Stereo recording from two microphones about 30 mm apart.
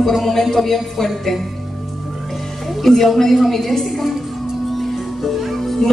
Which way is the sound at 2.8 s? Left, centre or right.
Centre.